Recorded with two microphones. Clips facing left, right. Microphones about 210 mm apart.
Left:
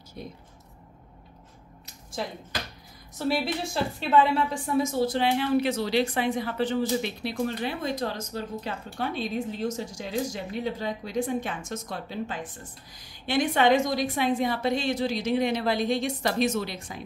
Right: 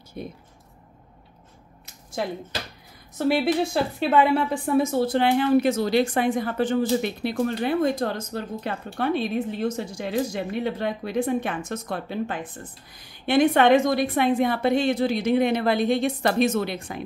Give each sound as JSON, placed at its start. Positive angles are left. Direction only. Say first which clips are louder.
{"t": 0.2, "sound": "a woman's voice", "louder": "right 5 dB", "side_deg": -55}
{"t": 3.2, "sound": "a woman's voice", "louder": "right 6 dB", "side_deg": -60}